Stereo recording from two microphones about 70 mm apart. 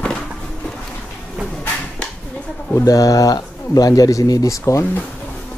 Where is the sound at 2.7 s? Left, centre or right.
Left.